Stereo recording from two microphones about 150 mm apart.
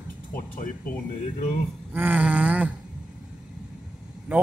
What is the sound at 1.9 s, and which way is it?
Speech, 10° right (ahead or behind).